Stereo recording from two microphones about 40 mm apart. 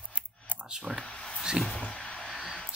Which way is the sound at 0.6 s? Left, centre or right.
Right.